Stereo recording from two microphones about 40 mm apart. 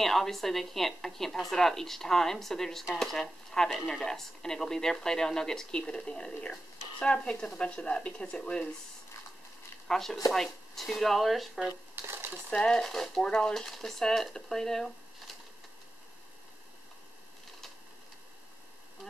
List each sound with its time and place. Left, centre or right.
0.0 s a woman's voice: centre
3.7 s speech: centre
4.0 s speech: centre
9.8 s speech: centre
11.9 s a sound: right
12.5 s speech: left
12.8 s a woman's voice: centre
13.1 s speech: left
13.6 s a woman's voice: centre